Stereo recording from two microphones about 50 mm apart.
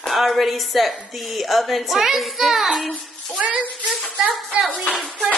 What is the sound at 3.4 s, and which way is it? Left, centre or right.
Speech, centre.